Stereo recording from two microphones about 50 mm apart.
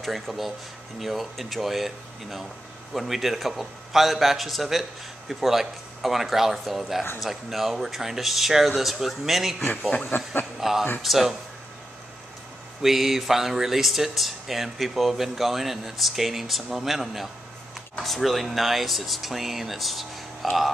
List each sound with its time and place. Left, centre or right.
0.0 s speech: centre
10.0 s speech: left
10.6 s speech: centre
12.8 s speech: centre